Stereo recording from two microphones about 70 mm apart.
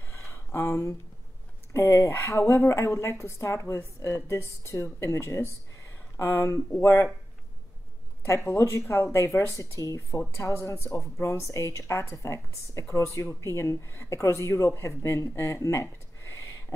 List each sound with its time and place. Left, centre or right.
0.1 s a sound: left
1.7 s a woman's voice: left
8.5 s a woman's voice: left